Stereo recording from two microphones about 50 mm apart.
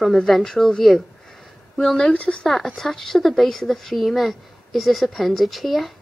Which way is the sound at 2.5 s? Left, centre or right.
Centre.